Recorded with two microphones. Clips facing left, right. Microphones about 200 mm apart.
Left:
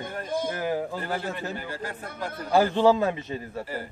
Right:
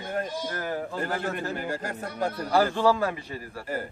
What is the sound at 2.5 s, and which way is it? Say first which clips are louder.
A man's voice: left 3 dB; 20° left (ahead or behind).